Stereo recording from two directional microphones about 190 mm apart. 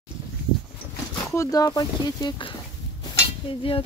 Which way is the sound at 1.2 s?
15° left (ahead or behind).